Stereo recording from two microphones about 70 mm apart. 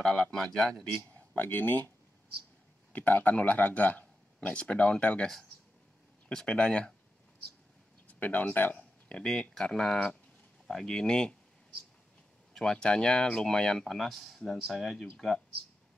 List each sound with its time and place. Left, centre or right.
0.0 s speech: centre
1.3 s speech: left
2.9 s speech: left
8.1 s speech: left
9.1 s speech: centre
12.5 s speech: centre